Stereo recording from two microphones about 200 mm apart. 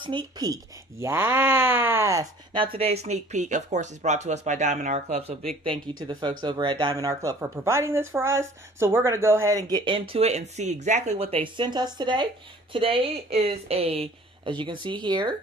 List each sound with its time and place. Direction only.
0.0 s speech: 25° right (ahead or behind)
5.6 s a woman's voice: 25° right (ahead or behind)